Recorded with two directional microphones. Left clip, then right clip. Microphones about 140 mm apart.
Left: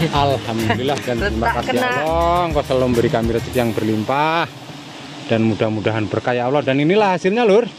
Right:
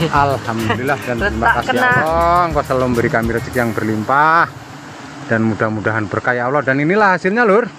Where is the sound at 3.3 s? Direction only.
30° left (ahead or behind).